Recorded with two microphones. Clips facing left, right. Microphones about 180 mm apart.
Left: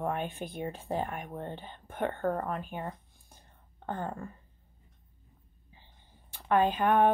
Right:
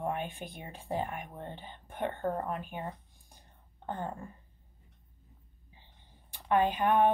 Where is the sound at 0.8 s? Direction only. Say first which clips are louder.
Right 2 dB; 45° left (ahead or behind).